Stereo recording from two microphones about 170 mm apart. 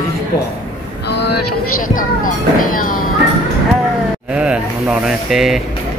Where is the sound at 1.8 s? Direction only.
50° left (ahead or behind).